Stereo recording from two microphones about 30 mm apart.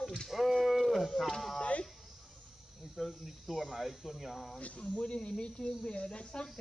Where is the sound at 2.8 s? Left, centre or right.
Centre.